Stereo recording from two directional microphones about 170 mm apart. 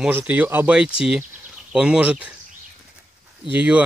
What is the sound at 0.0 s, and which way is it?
Speech, 10° right (ahead or behind).